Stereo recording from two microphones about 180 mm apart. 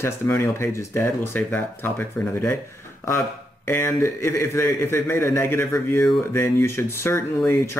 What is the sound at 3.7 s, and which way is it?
Speech, 15° left (ahead or behind).